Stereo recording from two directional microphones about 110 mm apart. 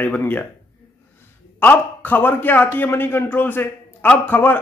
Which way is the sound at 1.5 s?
15° left (ahead or behind).